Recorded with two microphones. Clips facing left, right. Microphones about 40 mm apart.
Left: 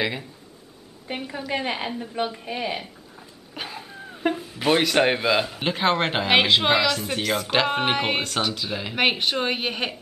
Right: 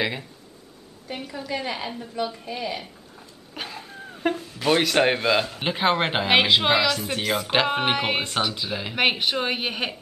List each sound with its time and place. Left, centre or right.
0.0 s speech: centre
1.0 s a woman's voice: left
2.8 s a sound: centre
4.6 s speech: centre